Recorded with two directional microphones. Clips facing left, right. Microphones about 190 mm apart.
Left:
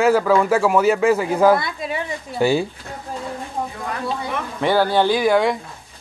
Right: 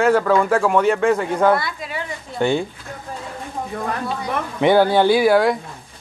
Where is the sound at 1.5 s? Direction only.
25° left (ahead or behind).